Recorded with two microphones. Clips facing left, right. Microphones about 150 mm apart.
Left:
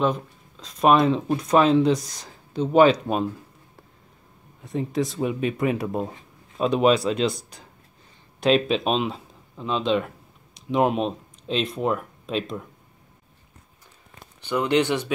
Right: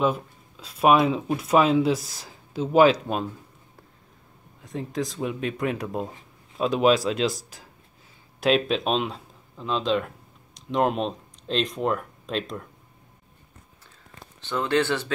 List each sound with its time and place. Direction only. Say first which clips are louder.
0.0 s speech: left 1 dB; 5° right (ahead or behind)
4.6 s speech: left 4 dB; centre (ahead or behind)
14.4 s speech: left 2 dB; 15° left (ahead or behind)